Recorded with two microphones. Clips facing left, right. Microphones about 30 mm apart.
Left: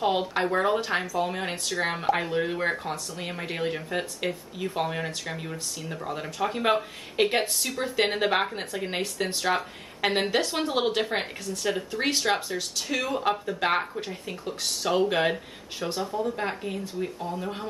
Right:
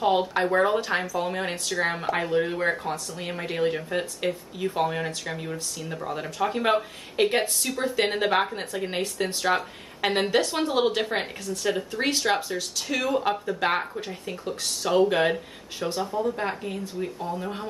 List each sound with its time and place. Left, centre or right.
0.0 s speech: centre